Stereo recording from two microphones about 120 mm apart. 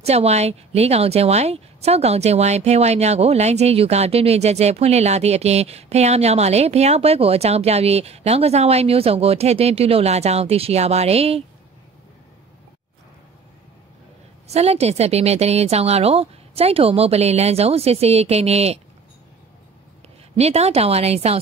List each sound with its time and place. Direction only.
0.0 s speech: 65° right (ahead or behind)
14.5 s speech: 60° right (ahead or behind)
20.3 s speech: 60° right (ahead or behind)